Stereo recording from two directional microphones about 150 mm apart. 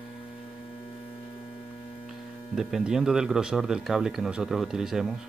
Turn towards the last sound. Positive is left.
turn(degrees=-5)  # may be behind; listen again after turning